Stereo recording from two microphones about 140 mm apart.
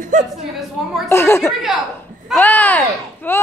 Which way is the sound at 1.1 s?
20° left (ahead or behind).